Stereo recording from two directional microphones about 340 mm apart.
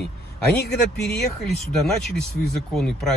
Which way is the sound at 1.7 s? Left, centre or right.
Centre.